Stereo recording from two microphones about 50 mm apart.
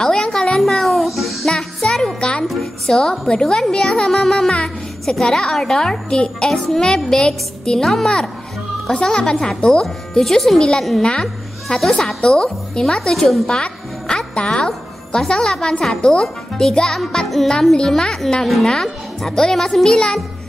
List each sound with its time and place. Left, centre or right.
0.0 s a sound: centre
0.6 s music: centre
1.5 s music: centre
2.1 s music: centre
2.4 s music: centre
2.9 s a child's voice: centre
13.5 s music: centre
15.1 s a child's voice: centre